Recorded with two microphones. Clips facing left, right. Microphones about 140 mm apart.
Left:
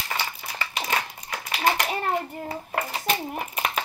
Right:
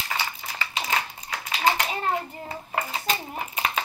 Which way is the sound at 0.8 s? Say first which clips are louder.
Even; 50° left (ahead or behind).